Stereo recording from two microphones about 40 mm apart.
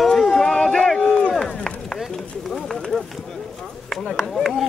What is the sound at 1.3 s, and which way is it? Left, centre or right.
Chop, centre.